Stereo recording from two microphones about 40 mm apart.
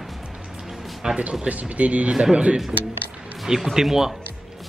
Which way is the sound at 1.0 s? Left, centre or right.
Centre.